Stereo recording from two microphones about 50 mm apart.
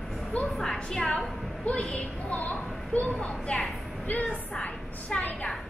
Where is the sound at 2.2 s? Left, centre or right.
Left.